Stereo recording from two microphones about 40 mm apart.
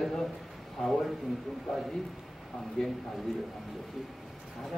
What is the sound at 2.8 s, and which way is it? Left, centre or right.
Speech, centre.